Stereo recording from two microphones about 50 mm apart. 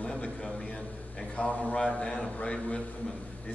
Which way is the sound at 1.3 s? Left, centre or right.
Left.